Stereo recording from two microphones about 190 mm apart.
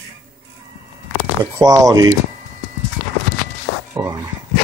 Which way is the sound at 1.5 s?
20° right (ahead or behind).